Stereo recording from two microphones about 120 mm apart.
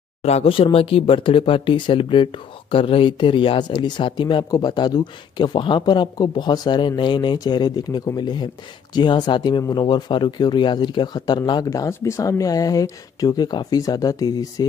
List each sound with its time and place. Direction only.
0.2 s speech: 60° left (ahead or behind); by 14.7 s 35° left (ahead or behind)